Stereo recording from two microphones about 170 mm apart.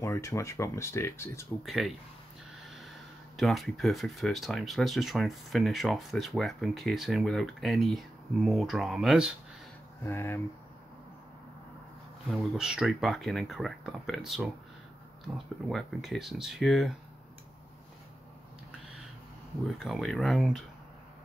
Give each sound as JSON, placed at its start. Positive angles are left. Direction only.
{"t": 0.0, "sound": "speech", "side_deg": 15}
{"t": 1.6, "sound": "speech", "side_deg": 0}
{"t": 3.3, "sound": "speech", "side_deg": 0}
{"t": 10.0, "sound": "speech", "side_deg": 15}
{"t": 12.3, "sound": "speech", "side_deg": -5}
{"t": 19.7, "sound": "speech", "side_deg": 0}